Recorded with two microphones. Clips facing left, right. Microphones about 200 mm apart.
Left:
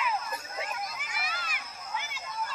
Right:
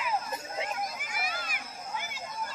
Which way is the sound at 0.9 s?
45° right (ahead or behind).